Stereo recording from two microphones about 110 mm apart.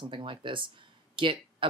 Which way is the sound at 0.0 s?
50° right (ahead or behind).